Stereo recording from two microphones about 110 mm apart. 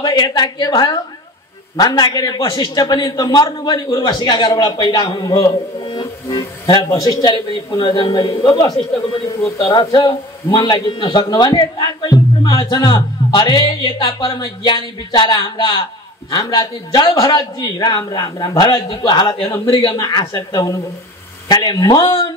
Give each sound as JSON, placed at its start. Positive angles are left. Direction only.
{"t": 0.0, "sound": "a man's voice", "side_deg": 40}
{"t": 9.8, "sound": "a man's voice", "side_deg": 35}
{"t": 10.0, "sound": "a man's voice", "side_deg": 45}
{"t": 20.0, "sound": "a man's voice", "side_deg": 40}